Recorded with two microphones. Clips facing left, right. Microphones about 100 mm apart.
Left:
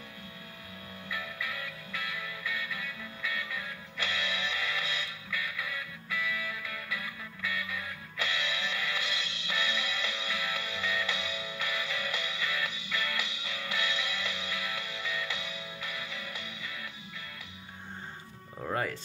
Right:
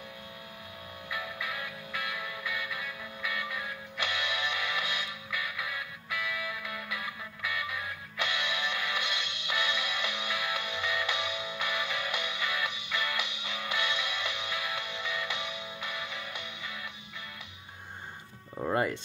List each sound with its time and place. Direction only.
1.1 s music: 20° right (ahead or behind)
18.6 s music: 25° right (ahead or behind)